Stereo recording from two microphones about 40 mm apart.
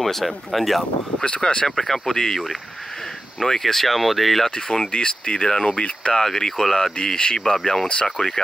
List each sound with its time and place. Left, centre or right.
0.0 s speech: centre
1.2 s speech: left
1.8 s speech: centre
3.4 s speech: centre
4.5 s speech: centre
6.2 s speech: centre
7.2 s speech: left
7.4 s speech: centre
8.2 s speech: left